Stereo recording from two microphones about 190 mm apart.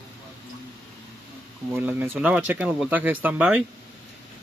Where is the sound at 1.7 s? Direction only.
10° right (ahead or behind).